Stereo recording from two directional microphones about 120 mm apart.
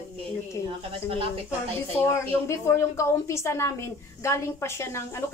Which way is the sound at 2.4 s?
25° left (ahead or behind).